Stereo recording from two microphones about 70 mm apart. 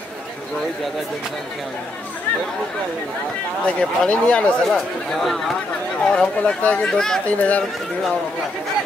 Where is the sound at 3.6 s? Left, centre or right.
Centre.